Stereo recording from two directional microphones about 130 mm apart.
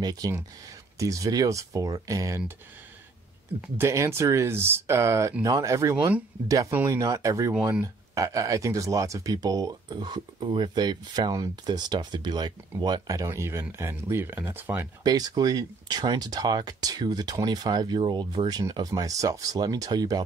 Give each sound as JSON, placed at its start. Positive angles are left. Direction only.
{"t": 0.0, "sound": "speech", "side_deg": -30}
{"t": 3.7, "sound": "speech", "side_deg": -20}
{"t": 15.0, "sound": "speech", "side_deg": -30}